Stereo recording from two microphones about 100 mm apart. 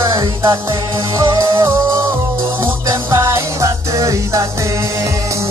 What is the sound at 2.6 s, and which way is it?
Music, 30° right (ahead or behind).